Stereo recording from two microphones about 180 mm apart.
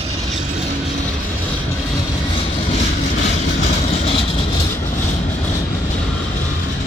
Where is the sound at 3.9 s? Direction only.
30° left (ahead or behind).